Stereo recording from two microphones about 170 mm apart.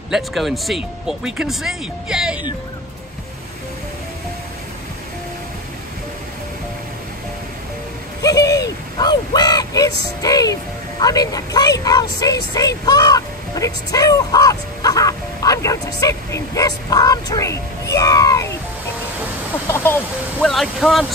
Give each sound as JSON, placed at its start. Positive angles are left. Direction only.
{"t": 0.1, "sound": "speech", "side_deg": 0}
{"t": 8.2, "sound": "hoot", "side_deg": 20}
{"t": 8.6, "sound": "a sound", "side_deg": 25}
{"t": 10.2, "sound": "speech", "side_deg": 20}
{"t": 19.7, "sound": "speech", "side_deg": 15}
{"t": 20.3, "sound": "speech", "side_deg": 0}